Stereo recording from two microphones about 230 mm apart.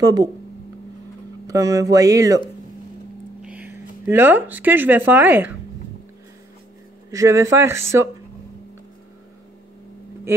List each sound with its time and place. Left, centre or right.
0.0 s speech: centre
1.5 s speech: centre
3.4 s speech: centre
7.1 s speech: centre